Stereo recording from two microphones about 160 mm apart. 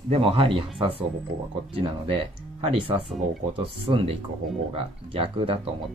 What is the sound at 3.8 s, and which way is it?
Speech, 35° right (ahead or behind).